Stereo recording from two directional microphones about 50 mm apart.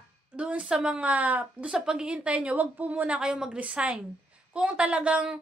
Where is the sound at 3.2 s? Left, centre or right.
Centre.